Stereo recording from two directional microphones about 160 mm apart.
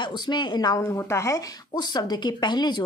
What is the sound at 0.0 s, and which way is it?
A woman's voice, 30° left (ahead or behind).